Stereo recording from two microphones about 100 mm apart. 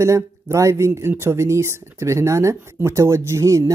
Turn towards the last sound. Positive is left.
turn(degrees=-30)  # may be behind; listen again after turning